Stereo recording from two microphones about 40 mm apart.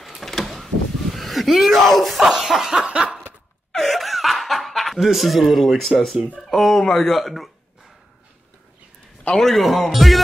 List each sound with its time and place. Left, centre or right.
0.2 s a sound: centre
2.2 s snicker: centre
2.8 s snicker: right
3.7 s snicker: centre
6.5 s speech: centre
9.4 s speech: centre